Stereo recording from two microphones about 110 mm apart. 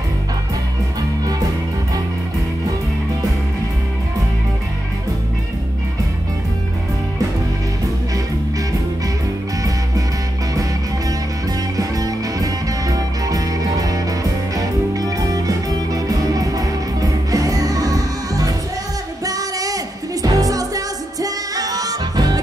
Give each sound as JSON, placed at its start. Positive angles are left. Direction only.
{"t": 11.7, "sound": "music", "side_deg": -35}